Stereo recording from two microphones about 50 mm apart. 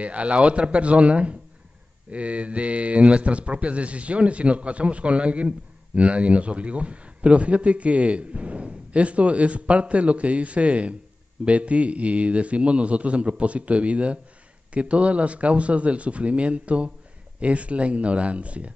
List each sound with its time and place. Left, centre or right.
0.0 s a man's voice: right